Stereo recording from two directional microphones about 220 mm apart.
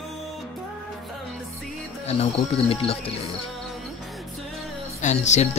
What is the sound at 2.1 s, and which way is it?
Speech, 25° left (ahead or behind).